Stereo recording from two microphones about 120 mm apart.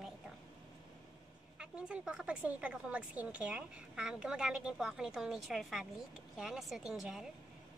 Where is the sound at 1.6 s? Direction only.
10° right (ahead or behind).